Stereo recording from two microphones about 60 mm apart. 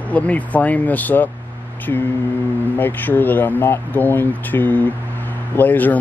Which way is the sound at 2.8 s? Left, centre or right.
Left.